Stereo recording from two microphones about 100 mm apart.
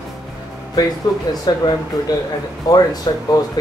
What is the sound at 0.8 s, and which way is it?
Speech, 40° left (ahead or behind).